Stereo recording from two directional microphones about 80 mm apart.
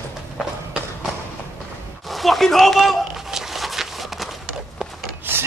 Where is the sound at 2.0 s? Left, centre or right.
Centre.